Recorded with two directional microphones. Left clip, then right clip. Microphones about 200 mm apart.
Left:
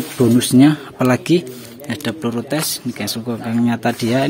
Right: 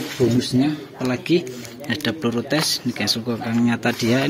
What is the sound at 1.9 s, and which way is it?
Speech, 10° left (ahead or behind).